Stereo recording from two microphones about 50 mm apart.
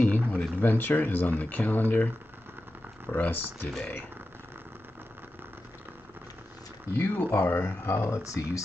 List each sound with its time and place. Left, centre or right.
0.0 s a sound: left
0.6 s speech: left
3.1 s speech: left
6.9 s speech: left
7.9 s speech: left